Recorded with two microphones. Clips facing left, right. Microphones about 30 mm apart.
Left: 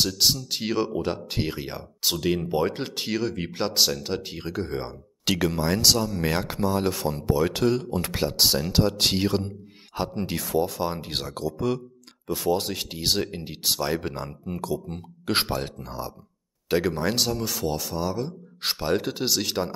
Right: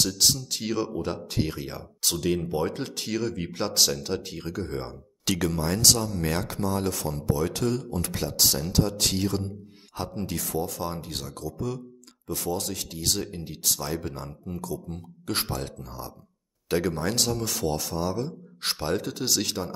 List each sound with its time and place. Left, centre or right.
0.1 s speech: centre
16.6 s speech: centre
17.3 s a man's voice: centre
18.9 s speech: left